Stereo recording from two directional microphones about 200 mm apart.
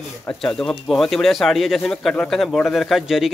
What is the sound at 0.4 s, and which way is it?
Speech, 5° left (ahead or behind).